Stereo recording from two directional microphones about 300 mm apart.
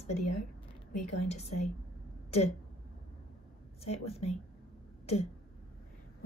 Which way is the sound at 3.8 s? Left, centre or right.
Centre.